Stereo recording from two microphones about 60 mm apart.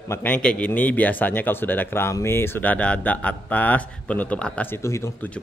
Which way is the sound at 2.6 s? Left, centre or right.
Left.